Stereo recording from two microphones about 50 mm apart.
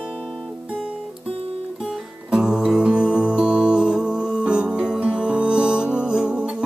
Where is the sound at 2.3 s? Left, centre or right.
Centre.